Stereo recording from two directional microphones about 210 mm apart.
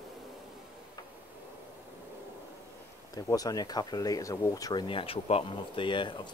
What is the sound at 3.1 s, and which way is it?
Speech, 15° left (ahead or behind).